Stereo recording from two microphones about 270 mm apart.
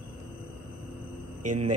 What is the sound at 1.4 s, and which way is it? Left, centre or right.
Speech, right.